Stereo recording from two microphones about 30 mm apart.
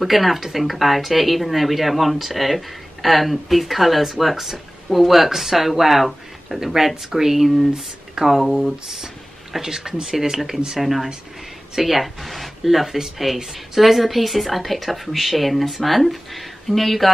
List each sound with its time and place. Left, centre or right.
0.0 s speech: centre
6.6 s speech: centre
8.4 s speech: centre